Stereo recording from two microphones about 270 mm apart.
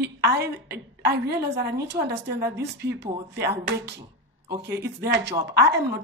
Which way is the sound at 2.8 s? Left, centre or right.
Right.